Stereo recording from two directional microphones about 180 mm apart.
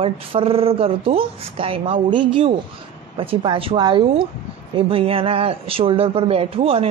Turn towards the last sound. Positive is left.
turn(degrees=-30)  # may be behind; listen again after turning